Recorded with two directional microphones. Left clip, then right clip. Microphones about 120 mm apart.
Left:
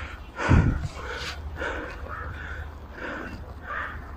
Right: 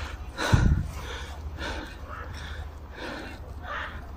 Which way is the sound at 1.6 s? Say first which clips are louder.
Left 3 dB; 60° right (ahead or behind).